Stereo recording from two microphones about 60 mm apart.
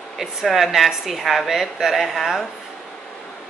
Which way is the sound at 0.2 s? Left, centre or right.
Centre.